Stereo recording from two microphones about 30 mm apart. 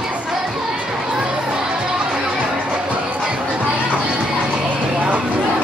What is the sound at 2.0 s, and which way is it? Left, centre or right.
Music, right.